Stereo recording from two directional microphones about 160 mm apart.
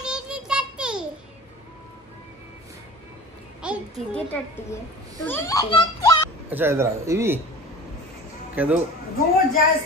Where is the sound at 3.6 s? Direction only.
5° right (ahead or behind).